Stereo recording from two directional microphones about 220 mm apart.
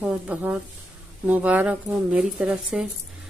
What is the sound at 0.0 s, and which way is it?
Speech, 5° right (ahead or behind).